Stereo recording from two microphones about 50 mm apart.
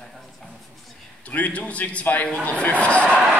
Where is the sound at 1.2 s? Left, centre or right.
Left.